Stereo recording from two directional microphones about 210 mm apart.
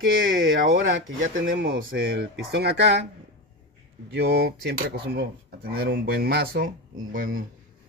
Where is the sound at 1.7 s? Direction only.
45° right (ahead or behind).